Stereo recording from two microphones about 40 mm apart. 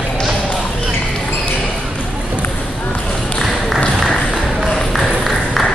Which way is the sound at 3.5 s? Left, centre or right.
Centre.